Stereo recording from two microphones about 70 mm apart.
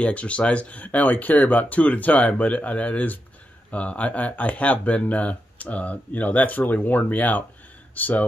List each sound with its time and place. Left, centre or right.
0.0 s speech: centre